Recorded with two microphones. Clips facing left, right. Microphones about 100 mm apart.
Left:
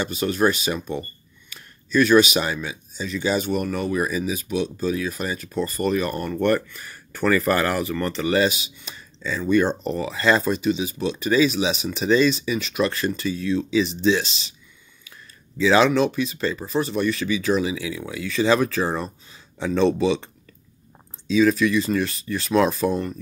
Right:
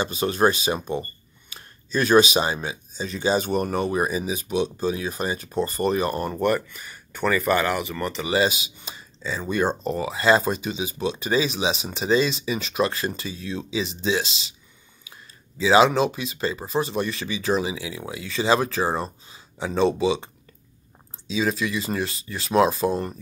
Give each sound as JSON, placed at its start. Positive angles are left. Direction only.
{"t": 0.0, "sound": "speech", "side_deg": -30}
{"t": 6.3, "sound": "speech", "side_deg": -10}
{"t": 8.9, "sound": "a sound", "side_deg": -30}
{"t": 9.4, "sound": "speech", "side_deg": -30}
{"t": 9.8, "sound": "speech", "side_deg": -20}
{"t": 15.6, "sound": "speech", "side_deg": -25}
{"t": 21.4, "sound": "speech", "side_deg": -30}